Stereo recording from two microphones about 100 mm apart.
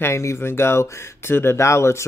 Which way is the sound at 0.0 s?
30° left (ahead or behind).